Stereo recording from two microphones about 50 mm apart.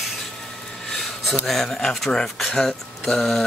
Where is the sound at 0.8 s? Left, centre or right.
Centre.